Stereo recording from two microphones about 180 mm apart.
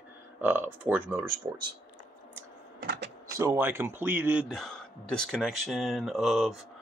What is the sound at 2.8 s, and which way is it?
Power windows, 65° right (ahead or behind).